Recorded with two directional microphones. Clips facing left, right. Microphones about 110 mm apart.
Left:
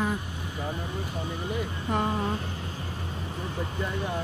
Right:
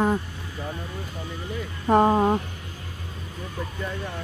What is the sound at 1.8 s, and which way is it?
Speech, 55° right (ahead or behind).